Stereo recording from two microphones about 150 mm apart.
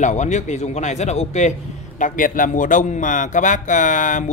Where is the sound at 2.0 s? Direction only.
65° left (ahead or behind).